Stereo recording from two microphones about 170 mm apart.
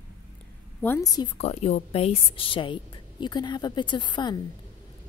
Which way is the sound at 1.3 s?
40° left (ahead or behind).